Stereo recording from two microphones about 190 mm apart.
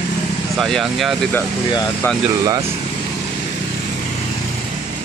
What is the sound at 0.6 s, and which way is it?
Speech, centre (ahead or behind).